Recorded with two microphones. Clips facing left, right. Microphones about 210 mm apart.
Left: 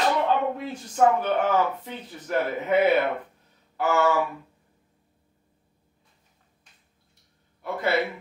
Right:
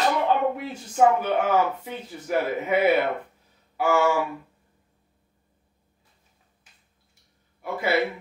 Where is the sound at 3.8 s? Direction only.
10° right (ahead or behind).